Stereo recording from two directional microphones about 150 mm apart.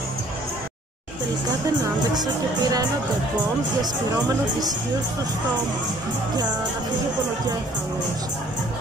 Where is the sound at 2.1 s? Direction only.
25° right (ahead or behind).